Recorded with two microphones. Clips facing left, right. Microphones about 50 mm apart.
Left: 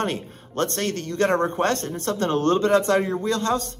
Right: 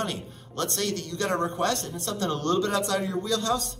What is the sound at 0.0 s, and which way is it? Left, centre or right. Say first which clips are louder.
Speech: left 5 dB; left.